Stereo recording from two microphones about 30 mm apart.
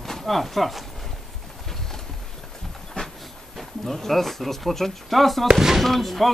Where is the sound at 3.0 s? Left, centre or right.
Left.